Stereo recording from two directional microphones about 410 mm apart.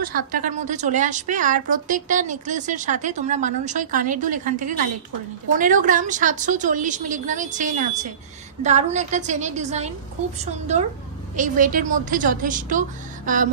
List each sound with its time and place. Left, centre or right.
0.0 s a woman's voice: centre